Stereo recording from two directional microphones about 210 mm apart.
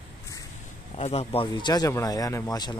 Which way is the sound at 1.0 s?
30° left (ahead or behind).